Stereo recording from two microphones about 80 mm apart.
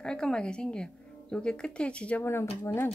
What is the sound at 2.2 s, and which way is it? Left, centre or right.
Speech, left.